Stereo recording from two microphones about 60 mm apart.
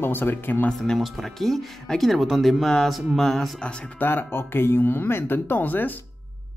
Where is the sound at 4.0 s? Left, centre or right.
Left.